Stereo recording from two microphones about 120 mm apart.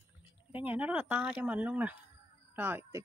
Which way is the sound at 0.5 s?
15° right (ahead or behind).